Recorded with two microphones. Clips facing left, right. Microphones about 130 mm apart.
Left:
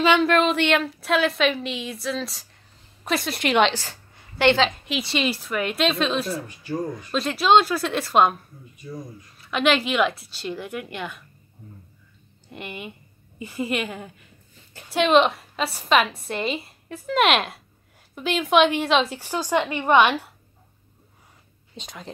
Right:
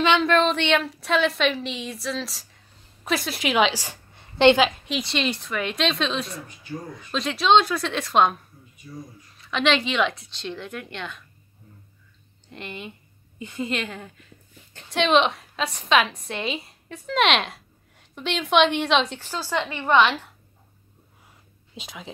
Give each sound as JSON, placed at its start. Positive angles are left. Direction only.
{"t": 0.0, "sound": "a woman's voice", "side_deg": 5}
{"t": 3.8, "sound": "a sound", "side_deg": -20}
{"t": 4.6, "sound": "a woman's voice", "side_deg": 0}
{"t": 9.4, "sound": "a woman's voice", "side_deg": 5}
{"t": 12.4, "sound": "a woman's voice", "side_deg": 10}
{"t": 21.7, "sound": "a woman's voice", "side_deg": -5}